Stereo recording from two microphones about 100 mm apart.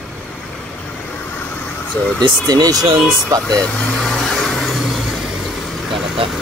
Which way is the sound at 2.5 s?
35° right (ahead or behind).